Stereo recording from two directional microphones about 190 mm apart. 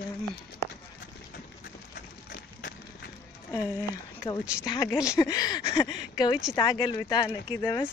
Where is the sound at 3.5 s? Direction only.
15° left (ahead or behind).